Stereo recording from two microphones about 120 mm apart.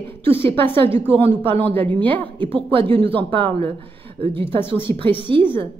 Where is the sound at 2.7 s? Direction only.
45° right (ahead or behind).